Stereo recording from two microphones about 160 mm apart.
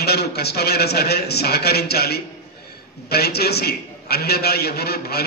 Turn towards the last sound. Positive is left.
turn(degrees=75)  # may be behind; listen again after turning